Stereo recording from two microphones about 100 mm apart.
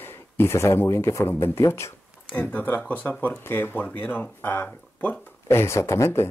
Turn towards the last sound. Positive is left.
turn(degrees=25)  # may be behind; listen again after turning